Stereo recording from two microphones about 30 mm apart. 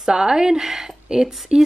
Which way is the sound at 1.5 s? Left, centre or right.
Right.